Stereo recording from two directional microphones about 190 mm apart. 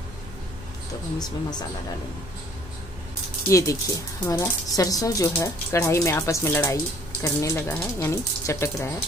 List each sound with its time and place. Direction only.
3.4 s speech: 15° left (ahead or behind)